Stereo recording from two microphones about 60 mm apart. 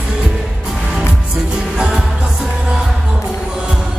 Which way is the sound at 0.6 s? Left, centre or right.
Centre.